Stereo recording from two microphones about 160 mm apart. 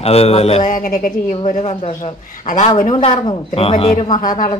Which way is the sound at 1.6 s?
40° left (ahead or behind).